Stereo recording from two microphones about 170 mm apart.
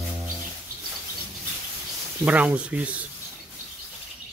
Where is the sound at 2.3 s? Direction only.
10° right (ahead or behind).